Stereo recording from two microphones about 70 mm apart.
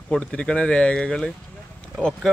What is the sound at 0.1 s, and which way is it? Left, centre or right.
Speech, centre.